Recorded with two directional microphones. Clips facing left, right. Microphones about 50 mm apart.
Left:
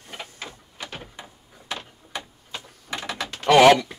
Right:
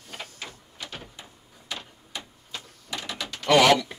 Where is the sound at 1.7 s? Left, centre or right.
Left.